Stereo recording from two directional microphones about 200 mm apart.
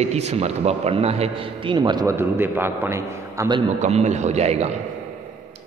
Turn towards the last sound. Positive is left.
turn(degrees=-30)  # may be behind; listen again after turning